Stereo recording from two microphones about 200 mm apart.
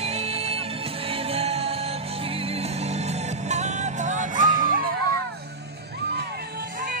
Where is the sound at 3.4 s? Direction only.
35° right (ahead or behind).